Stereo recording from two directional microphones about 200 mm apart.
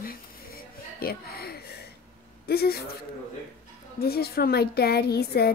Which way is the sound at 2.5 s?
50° left (ahead or behind).